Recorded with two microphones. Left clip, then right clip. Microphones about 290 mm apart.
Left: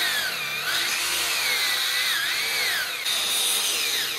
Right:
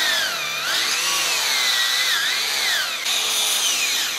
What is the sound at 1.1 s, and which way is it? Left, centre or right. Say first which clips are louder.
Tools: right 4 dB; centre.